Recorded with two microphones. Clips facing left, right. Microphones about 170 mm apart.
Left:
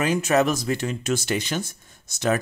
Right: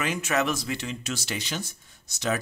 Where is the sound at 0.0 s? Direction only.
40° left (ahead or behind).